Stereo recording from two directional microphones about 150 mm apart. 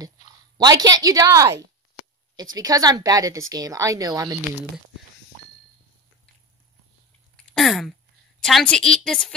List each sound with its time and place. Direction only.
0.6 s a woman's voice: 25° right (ahead or behind)
7.3 s a sound: centre (ahead or behind)
8.4 s a woman's voice: 5° left (ahead or behind)